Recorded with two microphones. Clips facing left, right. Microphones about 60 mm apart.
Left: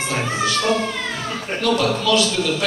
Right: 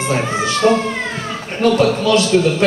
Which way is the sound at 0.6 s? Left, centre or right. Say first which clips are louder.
Right 6 dB; right.